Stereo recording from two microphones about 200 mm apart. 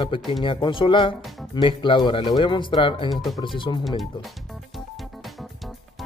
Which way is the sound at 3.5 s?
25° left (ahead or behind).